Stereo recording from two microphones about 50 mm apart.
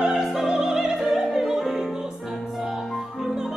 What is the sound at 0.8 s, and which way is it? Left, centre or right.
Opera, centre.